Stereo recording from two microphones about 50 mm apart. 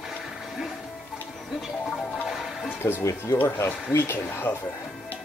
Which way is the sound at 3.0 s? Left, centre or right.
Left.